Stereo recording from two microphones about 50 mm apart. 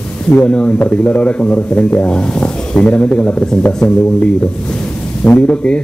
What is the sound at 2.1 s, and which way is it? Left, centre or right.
Speech, centre.